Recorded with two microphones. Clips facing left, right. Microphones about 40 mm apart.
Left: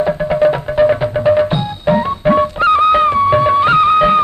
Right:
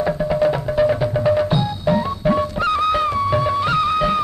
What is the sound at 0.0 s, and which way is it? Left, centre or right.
Music, left.